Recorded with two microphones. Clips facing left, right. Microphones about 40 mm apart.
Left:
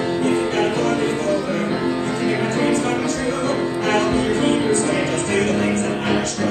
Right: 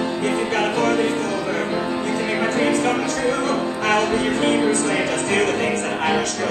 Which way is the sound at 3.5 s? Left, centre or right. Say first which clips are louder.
Even; right.